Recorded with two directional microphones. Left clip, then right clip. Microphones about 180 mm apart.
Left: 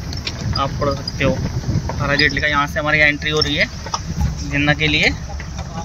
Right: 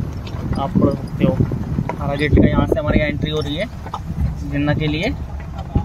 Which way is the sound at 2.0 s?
10° right (ahead or behind).